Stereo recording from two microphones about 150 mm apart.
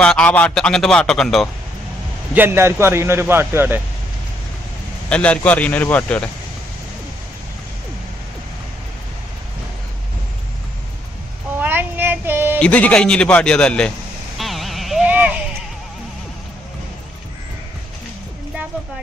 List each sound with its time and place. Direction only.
0.0 s speech: 5° left (ahead or behind)
2.3 s a man's voice: 15° right (ahead or behind)
5.1 s a man's voice: 10° left (ahead or behind)
11.6 s child singing: 15° right (ahead or behind)
12.5 s a man's voice: 10° left (ahead or behind)
14.4 s a sound: centre (ahead or behind)